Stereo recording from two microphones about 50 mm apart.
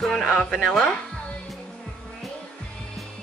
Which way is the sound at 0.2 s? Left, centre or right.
Centre.